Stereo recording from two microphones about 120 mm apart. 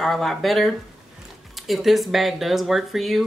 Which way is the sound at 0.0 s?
Centre (ahead or behind).